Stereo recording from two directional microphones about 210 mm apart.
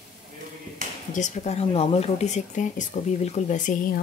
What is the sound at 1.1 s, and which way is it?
Speech, 35° left (ahead or behind).